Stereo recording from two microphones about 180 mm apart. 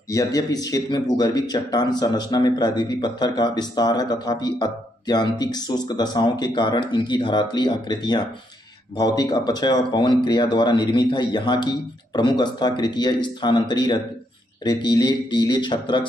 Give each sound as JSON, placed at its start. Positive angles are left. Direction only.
{"t": 0.1, "sound": "speech", "side_deg": 20}